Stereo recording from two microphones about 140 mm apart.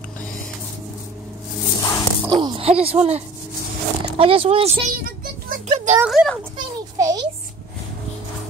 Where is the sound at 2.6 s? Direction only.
45° right (ahead or behind).